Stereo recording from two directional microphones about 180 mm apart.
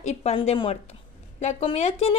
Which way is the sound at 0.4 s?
30° left (ahead or behind).